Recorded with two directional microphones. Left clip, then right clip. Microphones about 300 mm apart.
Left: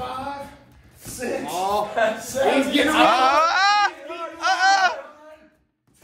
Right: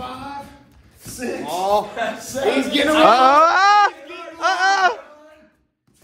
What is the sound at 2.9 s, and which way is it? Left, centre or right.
Speech, centre.